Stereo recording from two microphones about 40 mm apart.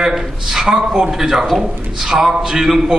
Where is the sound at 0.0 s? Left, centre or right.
Centre.